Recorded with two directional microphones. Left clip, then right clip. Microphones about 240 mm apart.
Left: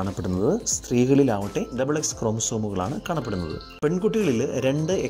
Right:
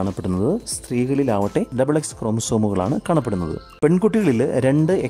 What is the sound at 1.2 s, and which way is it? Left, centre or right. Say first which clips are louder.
Speech: right 5 dB; centre.